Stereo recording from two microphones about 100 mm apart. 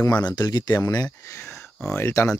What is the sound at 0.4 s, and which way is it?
Speech, 40° left (ahead or behind).